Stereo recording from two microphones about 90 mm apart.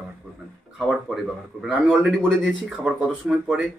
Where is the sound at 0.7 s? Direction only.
5° right (ahead or behind).